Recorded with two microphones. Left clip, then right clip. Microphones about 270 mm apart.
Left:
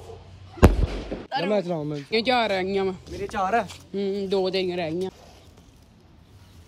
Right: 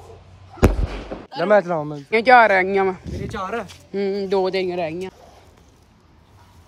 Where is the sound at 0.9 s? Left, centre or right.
Centre.